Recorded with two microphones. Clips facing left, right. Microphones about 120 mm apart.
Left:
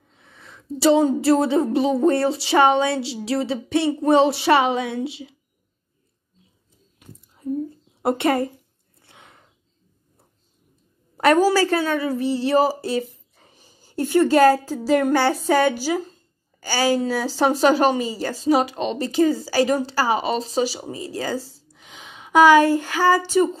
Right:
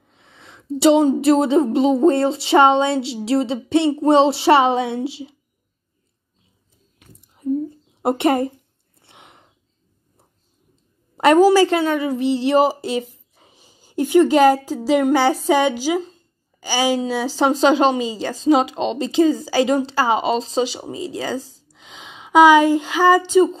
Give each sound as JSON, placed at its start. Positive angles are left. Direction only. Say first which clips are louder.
{"t": 0.2, "sound": "a woman's voice", "louder": "right 1 dB", "side_deg": -20}
{"t": 8.0, "sound": "a woman's voice", "louder": "right 2 dB", "side_deg": -20}
{"t": 9.0, "sound": "a sound", "louder": "right 2 dB", "side_deg": -20}
{"t": 11.1, "sound": "a woman's voice", "louder": "right 4 dB", "side_deg": -20}